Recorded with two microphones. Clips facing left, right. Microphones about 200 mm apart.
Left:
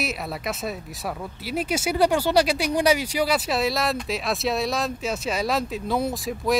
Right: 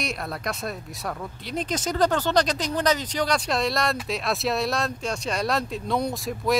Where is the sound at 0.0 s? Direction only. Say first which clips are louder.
Left 1 dB; 5° left (ahead or behind).